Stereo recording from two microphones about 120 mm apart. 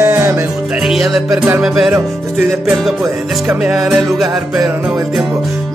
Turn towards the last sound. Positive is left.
turn(degrees=0)  # may be behind; listen again after turning